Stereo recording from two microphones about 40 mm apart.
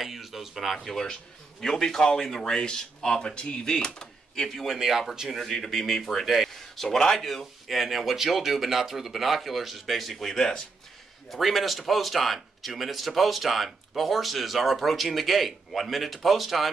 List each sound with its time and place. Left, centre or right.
0.0 s a sound: centre
0.7 s a man's voice: centre
4.7 s speech: centre
5.3 s speech: centre
6.5 s speech: centre
11.2 s speech: centre